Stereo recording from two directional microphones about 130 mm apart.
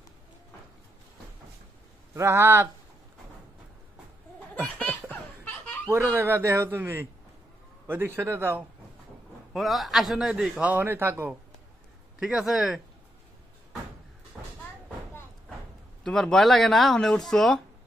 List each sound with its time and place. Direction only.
2.1 s speech: 20° right (ahead or behind)
5.4 s snicker: 10° left (ahead or behind)
6.1 s speech: 20° right (ahead or behind)
9.5 s a man's voice: centre (ahead or behind); by 11.3 s 15° right (ahead or behind)
12.2 s a man's voice: 5° right (ahead or behind)
14.3 s vehicle: 5° right (ahead or behind)
16.0 s a man's voice: 5° left (ahead or behind)